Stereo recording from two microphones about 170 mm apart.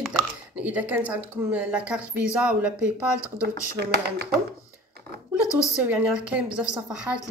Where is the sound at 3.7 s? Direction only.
65° right (ahead or behind).